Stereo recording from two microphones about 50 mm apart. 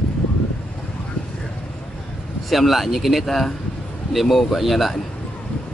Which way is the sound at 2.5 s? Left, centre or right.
Centre.